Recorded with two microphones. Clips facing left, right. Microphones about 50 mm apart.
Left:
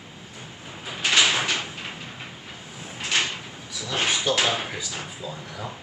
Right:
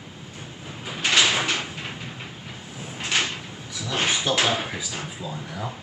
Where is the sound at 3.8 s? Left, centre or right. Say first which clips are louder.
Even; centre.